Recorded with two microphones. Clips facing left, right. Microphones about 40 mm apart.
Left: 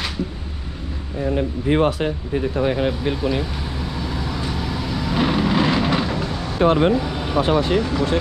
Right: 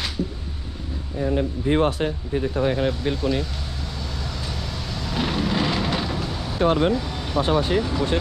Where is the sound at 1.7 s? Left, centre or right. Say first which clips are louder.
Left 2 dB; left.